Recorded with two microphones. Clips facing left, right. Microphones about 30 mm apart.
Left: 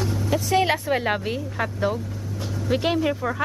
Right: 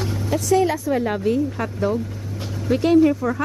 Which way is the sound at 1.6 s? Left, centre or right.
Centre.